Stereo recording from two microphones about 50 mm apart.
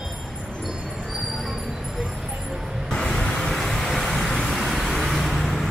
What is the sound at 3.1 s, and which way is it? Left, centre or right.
Vehicle, centre.